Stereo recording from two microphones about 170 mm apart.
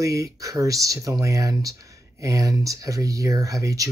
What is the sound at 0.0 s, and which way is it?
Speech, 20° right (ahead or behind).